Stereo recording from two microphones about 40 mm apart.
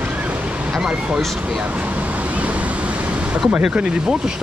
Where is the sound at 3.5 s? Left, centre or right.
Right.